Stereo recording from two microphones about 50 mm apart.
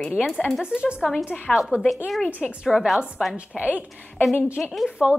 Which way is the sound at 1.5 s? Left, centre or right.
Centre.